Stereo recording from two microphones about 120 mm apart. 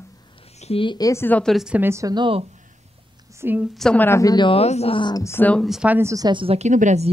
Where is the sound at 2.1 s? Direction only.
45° right (ahead or behind).